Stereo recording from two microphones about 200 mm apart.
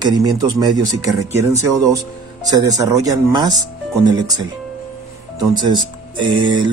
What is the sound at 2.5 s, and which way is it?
Speech, 15° right (ahead or behind).